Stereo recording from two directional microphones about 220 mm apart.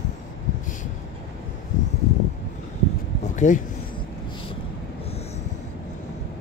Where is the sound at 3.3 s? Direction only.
35° left (ahead or behind).